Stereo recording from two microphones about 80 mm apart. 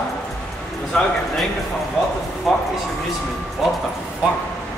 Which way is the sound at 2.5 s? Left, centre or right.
Centre.